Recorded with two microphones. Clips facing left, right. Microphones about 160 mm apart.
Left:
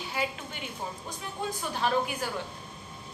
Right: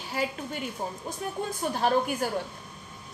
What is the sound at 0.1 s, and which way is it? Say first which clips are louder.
A woman's voice: right 4 dB; 40° right (ahead or behind).